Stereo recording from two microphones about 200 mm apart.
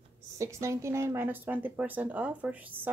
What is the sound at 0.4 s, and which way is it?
Speech, 15° right (ahead or behind).